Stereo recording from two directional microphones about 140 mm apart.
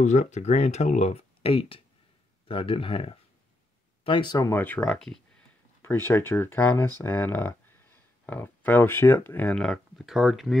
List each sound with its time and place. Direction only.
0.0 s speech: 60° left (ahead or behind); by 4.5 s 30° left (ahead or behind)
4.5 s speech: 15° left (ahead or behind)
5.8 s speech: 15° left (ahead or behind); by 10.6 s centre (ahead or behind)